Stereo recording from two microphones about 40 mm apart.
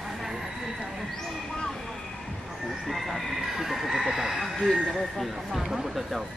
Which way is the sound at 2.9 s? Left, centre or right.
Centre.